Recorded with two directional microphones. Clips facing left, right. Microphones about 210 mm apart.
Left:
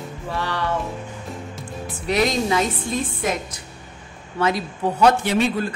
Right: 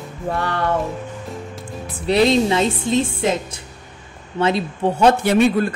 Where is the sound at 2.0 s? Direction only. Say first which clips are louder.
Right 5 dB; 30° right (ahead or behind).